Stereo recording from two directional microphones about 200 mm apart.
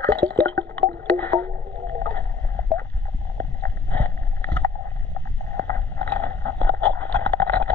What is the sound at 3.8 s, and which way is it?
Vehicle, 10° left (ahead or behind).